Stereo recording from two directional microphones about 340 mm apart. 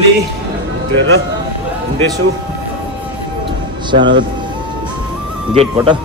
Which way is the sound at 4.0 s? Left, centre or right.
Right.